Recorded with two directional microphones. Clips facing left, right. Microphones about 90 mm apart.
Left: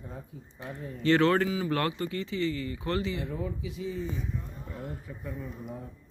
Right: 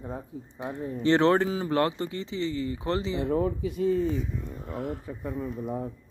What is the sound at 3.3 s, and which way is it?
Speech, 55° right (ahead or behind).